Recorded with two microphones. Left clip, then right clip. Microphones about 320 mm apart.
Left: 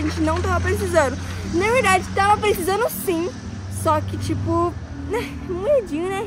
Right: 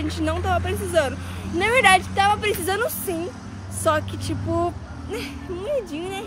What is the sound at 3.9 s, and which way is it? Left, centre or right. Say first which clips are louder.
Speech: left 1 dB; centre.